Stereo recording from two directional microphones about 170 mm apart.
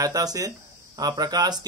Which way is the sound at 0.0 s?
20° right (ahead or behind).